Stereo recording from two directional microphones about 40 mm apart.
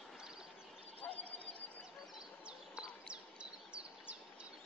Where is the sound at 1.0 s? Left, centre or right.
Left.